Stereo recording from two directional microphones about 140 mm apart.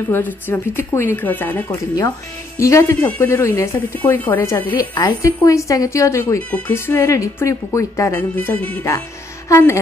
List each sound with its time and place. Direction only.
0.1 s speech: 15° left (ahead or behind)
2.0 s a woman's voice: 25° left (ahead or behind)
4.7 s a woman's voice: 30° left (ahead or behind); by 8.7 s 10° left (ahead or behind)
9.5 s a woman's voice: 20° left (ahead or behind)